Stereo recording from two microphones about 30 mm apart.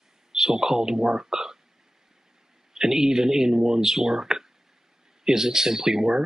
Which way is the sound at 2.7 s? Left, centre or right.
Centre.